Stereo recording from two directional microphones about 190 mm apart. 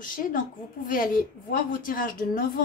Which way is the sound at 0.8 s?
45° left (ahead or behind).